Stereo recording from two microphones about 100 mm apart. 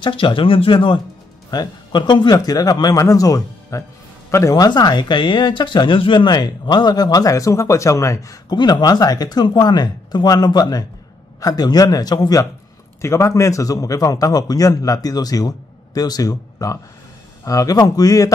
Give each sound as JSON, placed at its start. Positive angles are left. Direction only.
{"t": 0.0, "sound": "a man's voice", "side_deg": 60}
{"t": 4.6, "sound": "a man's voice", "side_deg": 45}
{"t": 13.0, "sound": "a man's voice", "side_deg": 30}